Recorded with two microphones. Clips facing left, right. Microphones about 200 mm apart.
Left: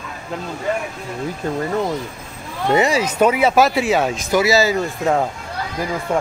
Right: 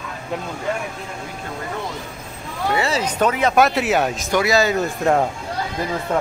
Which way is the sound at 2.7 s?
15° left (ahead or behind).